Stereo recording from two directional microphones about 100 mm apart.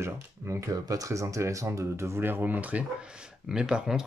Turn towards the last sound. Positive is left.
turn(degrees=-10)  # may be behind; listen again after turning